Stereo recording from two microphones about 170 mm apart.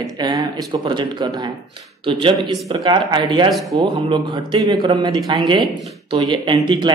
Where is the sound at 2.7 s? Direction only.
25° right (ahead or behind).